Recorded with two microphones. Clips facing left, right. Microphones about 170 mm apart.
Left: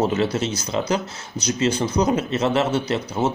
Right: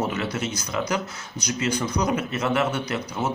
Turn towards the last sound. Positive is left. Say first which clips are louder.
# left 5 dB
turn(degrees=30)  # may be behind; listen again after turning